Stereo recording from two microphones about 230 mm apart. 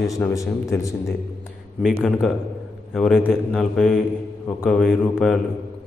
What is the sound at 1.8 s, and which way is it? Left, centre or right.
A man's voice, centre.